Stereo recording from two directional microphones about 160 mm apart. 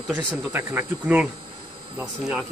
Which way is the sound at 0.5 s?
15° right (ahead or behind).